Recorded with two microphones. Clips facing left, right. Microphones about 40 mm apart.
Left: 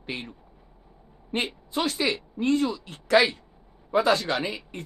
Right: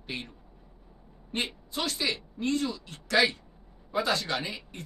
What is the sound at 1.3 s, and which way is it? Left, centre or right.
A woman's voice, left.